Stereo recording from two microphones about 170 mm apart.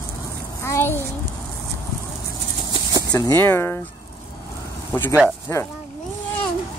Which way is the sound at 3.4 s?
10° left (ahead or behind).